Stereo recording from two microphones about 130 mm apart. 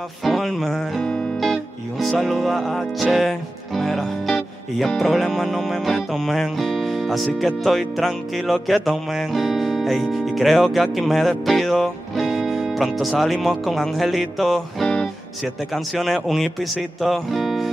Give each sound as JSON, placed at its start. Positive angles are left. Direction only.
{"t": 0.2, "sound": "music", "side_deg": 0}
{"t": 17.0, "sound": "speech", "side_deg": 0}